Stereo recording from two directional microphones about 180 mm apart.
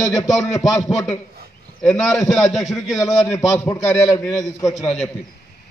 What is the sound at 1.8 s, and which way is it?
A man's voice, centre (ahead or behind).